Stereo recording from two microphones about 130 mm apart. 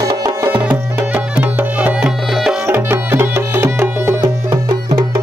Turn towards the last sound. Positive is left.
turn(degrees=-20)  # may be behind; listen again after turning